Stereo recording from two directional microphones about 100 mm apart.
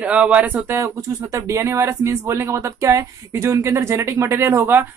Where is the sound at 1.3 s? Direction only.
30° right (ahead or behind).